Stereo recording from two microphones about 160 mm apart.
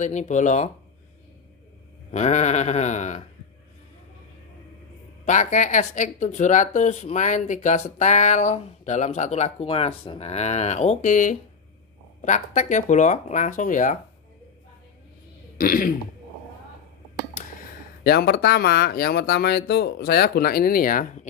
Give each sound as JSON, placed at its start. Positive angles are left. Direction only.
{"t": 0.0, "sound": "speech", "side_deg": 50}
{"t": 2.0, "sound": "speech", "side_deg": 45}
{"t": 5.2, "sound": "speech", "side_deg": 50}
{"t": 15.5, "sound": "throat clearing", "side_deg": 60}
{"t": 18.0, "sound": "speech", "side_deg": 80}